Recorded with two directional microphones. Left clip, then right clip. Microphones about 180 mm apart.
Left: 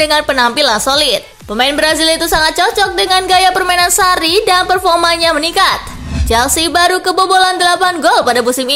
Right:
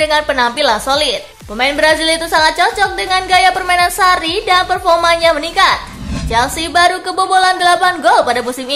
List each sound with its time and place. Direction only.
0.0 s a woman's voice: 25° left (ahead or behind)